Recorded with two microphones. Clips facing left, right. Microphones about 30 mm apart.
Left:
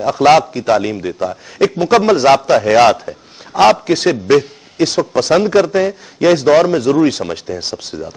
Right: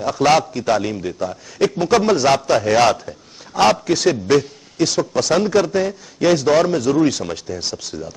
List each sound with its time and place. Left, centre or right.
0.0 s a man's voice: centre